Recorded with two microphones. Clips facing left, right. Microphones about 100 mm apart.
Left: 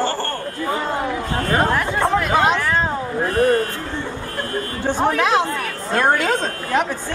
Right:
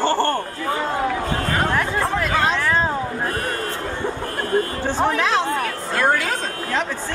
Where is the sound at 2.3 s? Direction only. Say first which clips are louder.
Left 3 dB; 20° left (ahead or behind).